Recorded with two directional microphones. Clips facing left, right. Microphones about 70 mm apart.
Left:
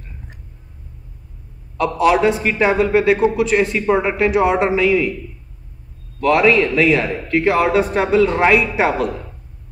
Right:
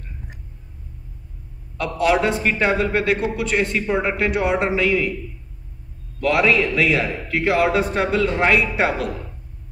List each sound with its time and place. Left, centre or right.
1.8 s a man's voice: centre
6.2 s a man's voice: centre